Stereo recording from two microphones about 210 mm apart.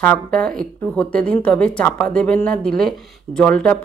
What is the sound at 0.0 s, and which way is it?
Speech, 5° left (ahead or behind).